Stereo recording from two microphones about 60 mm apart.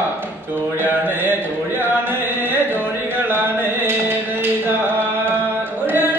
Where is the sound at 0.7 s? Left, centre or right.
Right.